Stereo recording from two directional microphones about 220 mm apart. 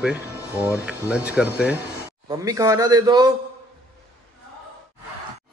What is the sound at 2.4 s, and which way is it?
Speech, 15° right (ahead or behind).